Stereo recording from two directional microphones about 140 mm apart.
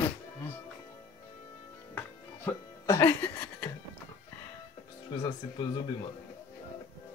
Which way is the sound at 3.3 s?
25° left (ahead or behind).